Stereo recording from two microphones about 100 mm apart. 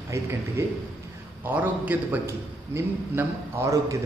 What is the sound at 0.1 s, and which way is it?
A man's voice, 25° right (ahead or behind).